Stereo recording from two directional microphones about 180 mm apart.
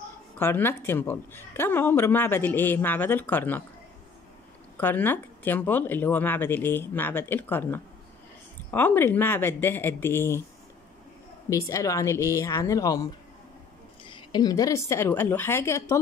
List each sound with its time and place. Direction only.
0.4 s speech: 10° left (ahead or behind)
4.7 s speech: 10° left (ahead or behind)
11.4 s speech: 15° left (ahead or behind)